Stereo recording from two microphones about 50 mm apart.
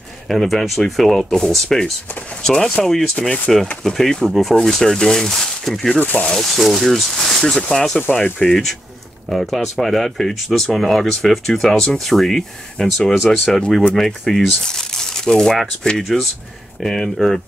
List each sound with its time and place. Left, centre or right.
0.3 s speech: centre
3.2 s speech: left
3.8 s speech: centre
5.9 s speech: left
6.3 s speech: centre